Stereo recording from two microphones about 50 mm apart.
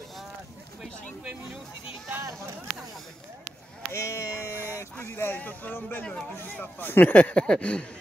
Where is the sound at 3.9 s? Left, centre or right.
Left.